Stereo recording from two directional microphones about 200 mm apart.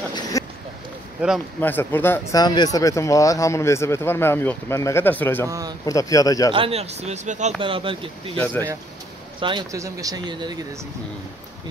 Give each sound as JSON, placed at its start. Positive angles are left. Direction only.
{"t": 0.1, "sound": "a sound", "side_deg": 15}
{"t": 1.6, "sound": "speech", "side_deg": 10}
{"t": 5.5, "sound": "speech", "side_deg": -20}
{"t": 5.9, "sound": "speech", "side_deg": 15}
{"t": 6.5, "sound": "speech", "side_deg": -30}
{"t": 7.6, "sound": "speech", "side_deg": -25}
{"t": 9.4, "sound": "speech", "side_deg": -25}